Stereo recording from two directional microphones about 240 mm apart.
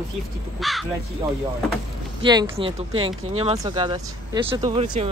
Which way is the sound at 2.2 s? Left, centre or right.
Centre.